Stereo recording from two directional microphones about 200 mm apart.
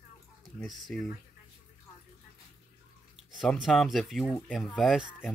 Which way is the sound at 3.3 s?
Centre (ahead or behind).